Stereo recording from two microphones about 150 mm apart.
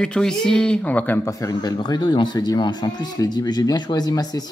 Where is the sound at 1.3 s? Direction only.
25° left (ahead or behind).